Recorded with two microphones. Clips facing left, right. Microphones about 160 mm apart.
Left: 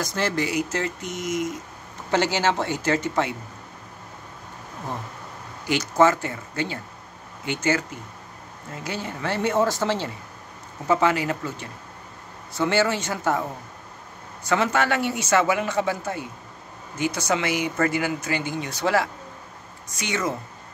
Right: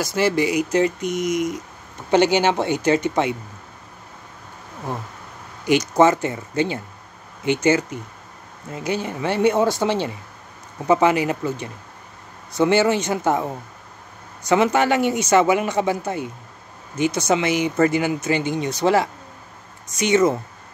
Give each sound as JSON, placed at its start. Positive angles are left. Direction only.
{"t": 0.0, "sound": "speech", "side_deg": -10}
{"t": 5.7, "sound": "speech", "side_deg": -20}